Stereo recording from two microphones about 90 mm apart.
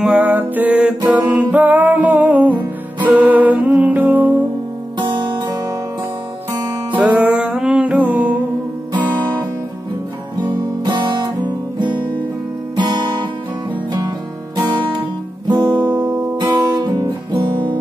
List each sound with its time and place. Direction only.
0.0 s music: 20° right (ahead or behind)
4.9 s music: 60° right (ahead or behind)
6.9 s music: 15° right (ahead or behind)
10.4 s guitar: 60° right (ahead or behind)
12.7 s music: 60° right (ahead or behind)
15.8 s guitar: 20° right (ahead or behind)
16.3 s guitar: 50° right (ahead or behind)
17.3 s guitar: 60° right (ahead or behind)